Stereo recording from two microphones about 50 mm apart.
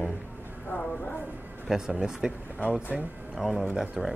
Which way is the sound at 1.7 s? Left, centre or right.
Centre.